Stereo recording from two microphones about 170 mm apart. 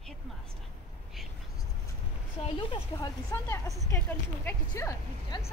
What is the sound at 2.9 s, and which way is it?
Speech, 20° left (ahead or behind).